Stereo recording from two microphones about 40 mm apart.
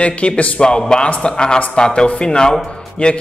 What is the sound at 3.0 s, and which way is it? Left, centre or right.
Speech, left.